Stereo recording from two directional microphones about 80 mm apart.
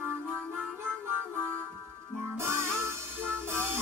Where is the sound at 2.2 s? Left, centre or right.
Right.